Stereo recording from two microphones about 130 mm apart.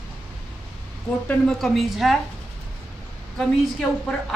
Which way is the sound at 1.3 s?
Centre (ahead or behind).